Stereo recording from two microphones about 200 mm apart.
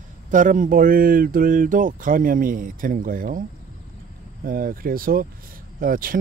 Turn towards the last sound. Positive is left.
turn(degrees=-45)  # may be behind; listen again after turning